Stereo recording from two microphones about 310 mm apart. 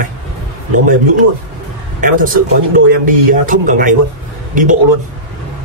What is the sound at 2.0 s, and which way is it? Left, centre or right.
Speech, right.